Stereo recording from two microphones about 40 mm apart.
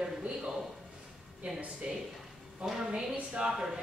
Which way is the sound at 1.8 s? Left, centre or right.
Right.